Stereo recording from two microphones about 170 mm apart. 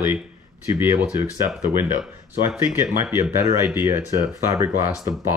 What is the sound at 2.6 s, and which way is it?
Speech, 15° right (ahead or behind).